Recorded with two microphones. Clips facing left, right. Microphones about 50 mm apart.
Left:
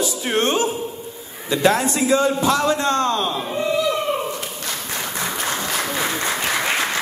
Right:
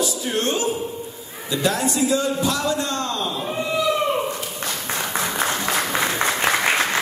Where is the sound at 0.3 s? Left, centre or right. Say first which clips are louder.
Left 5 dB; left.